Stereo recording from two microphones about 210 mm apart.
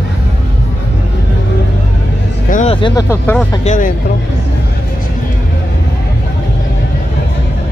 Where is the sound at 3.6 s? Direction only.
40° left (ahead or behind).